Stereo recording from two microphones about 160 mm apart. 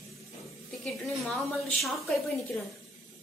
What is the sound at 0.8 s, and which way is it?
A woman's voice, centre (ahead or behind).